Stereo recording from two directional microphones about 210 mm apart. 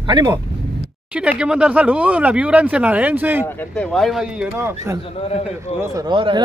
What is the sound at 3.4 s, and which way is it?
Speech, 5° left (ahead or behind).